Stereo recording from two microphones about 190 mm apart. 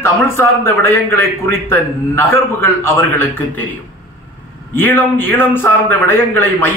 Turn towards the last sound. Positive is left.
turn(degrees=10)  # may be behind; listen again after turning